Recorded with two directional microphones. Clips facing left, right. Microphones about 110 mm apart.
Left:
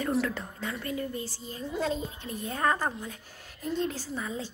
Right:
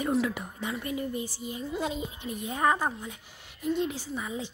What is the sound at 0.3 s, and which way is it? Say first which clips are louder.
Speech: right 1 dB; 15° right (ahead or behind).